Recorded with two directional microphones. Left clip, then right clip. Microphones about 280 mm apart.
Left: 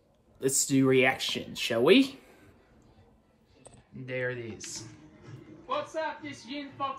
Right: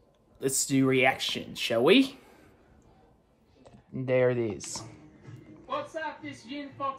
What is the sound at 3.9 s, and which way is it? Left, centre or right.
Speech, centre.